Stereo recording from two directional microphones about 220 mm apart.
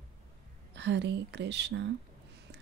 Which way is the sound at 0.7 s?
50° right (ahead or behind).